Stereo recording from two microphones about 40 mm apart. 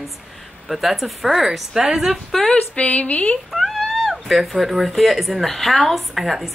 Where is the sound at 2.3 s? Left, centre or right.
Centre.